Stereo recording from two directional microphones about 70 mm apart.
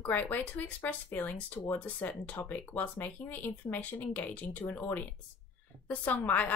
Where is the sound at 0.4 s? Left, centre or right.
Left.